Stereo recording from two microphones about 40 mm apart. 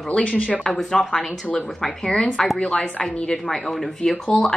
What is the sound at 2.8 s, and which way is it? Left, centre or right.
Speech, left.